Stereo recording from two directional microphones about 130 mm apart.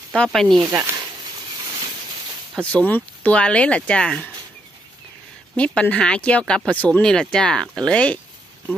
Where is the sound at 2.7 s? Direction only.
10° left (ahead or behind).